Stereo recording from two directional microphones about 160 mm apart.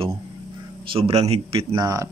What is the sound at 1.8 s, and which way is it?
Speech, 20° right (ahead or behind).